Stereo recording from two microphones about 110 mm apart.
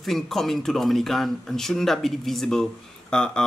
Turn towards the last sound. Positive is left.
turn(degrees=10)  # may be behind; listen again after turning